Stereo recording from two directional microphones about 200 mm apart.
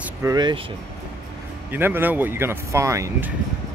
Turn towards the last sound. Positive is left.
turn(degrees=-15)  # may be behind; listen again after turning